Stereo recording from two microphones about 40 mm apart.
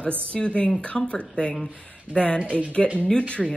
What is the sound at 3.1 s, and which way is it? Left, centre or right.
Speech, left.